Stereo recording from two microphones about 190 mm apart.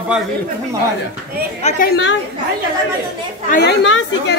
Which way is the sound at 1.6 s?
35° left (ahead or behind).